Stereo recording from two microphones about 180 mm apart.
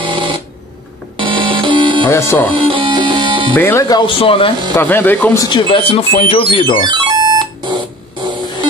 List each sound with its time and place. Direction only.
0.0 s a sound: 25° right (ahead or behind)
1.1 s music: 25° right (ahead or behind)
2.0 s speech: 15° left (ahead or behind)
2.5 s music: 30° right (ahead or behind)
3.5 s speech: 15° left (ahead or behind); by 4.6 s 30° left (ahead or behind)
4.7 s speech: 10° left (ahead or behind); by 6.8 s 30° left (ahead or behind)
6.8 s ringtone: 25° right (ahead or behind)
8.3 s a sound: 25° right (ahead or behind)